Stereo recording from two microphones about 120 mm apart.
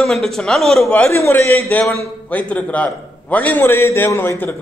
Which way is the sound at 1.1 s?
20° left (ahead or behind).